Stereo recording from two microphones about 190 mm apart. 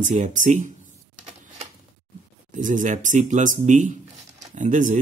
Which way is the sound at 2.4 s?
40° right (ahead or behind).